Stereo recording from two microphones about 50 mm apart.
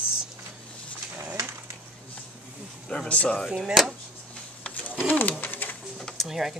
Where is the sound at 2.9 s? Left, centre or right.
Centre.